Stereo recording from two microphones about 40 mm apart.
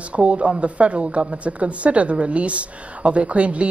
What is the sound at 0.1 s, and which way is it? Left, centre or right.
Speech, right.